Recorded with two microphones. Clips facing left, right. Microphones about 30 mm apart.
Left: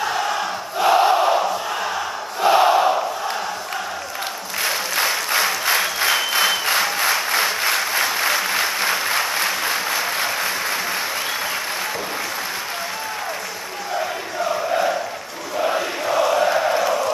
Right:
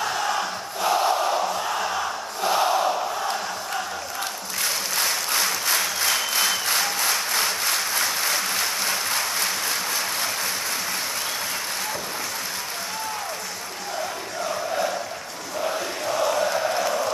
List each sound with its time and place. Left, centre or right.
0.0 s crowd: centre
0.7 s crowd: left
4.6 s applause: left
14.4 s a sound: centre
15.6 s chant: left